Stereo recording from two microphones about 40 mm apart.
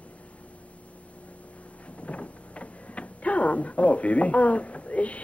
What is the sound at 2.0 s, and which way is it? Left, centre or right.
Speech, left.